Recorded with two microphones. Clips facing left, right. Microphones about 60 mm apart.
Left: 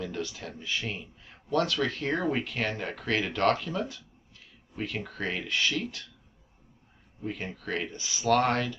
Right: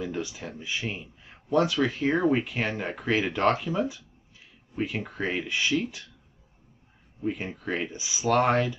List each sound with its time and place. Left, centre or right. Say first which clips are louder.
0.0 s speech: right 2 dB; centre
7.2 s speech: right 4 dB; centre